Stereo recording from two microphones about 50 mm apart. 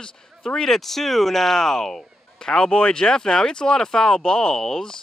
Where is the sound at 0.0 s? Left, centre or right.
Centre.